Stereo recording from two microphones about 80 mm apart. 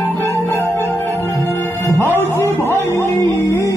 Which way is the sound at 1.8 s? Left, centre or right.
Left.